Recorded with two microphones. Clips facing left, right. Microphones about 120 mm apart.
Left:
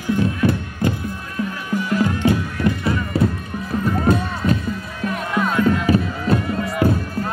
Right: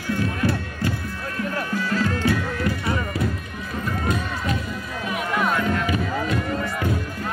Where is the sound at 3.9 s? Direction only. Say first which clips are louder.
Left 6 dB; 35° left (ahead or behind).